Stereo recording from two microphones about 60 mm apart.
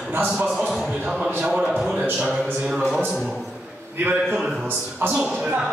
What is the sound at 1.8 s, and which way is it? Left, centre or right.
Music, centre.